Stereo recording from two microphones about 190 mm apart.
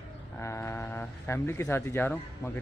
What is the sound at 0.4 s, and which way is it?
Speech, 15° left (ahead or behind).